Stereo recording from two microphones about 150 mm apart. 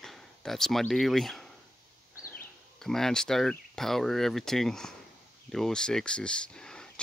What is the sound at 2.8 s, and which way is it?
Speech, 5° left (ahead or behind).